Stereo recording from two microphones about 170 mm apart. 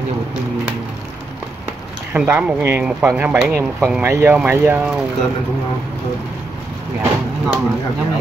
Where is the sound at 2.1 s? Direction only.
10° right (ahead or behind).